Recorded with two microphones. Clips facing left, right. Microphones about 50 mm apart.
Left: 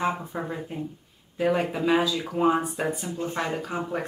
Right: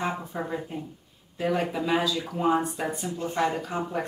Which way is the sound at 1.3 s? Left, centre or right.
Centre.